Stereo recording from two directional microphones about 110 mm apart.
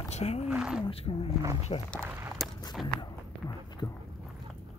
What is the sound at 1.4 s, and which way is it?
Speech, 30° right (ahead or behind).